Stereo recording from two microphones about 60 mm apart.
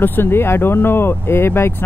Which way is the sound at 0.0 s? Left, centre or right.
Left.